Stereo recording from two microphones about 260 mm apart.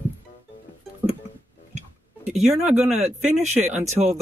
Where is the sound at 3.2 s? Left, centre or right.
Right.